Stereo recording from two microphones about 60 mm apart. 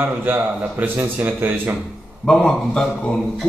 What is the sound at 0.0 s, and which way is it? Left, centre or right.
Speech, right.